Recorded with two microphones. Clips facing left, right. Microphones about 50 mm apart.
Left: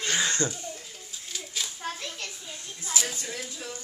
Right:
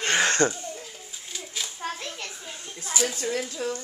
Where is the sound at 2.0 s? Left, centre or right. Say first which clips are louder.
Right 2 dB; right.